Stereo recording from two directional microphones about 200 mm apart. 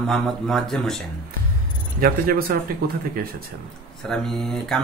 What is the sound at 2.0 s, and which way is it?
Speech, 50° right (ahead or behind).